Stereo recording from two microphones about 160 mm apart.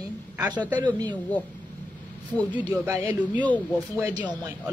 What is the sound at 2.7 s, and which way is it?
A woman's voice, 10° right (ahead or behind).